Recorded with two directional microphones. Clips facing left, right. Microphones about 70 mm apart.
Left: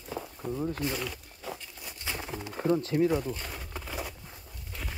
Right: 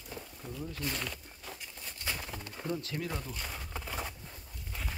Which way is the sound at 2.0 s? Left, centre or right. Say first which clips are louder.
Left 3 dB; centre.